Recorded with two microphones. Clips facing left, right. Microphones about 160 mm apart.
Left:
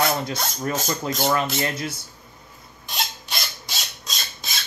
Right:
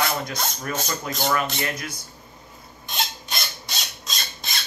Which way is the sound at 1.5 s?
25° left (ahead or behind).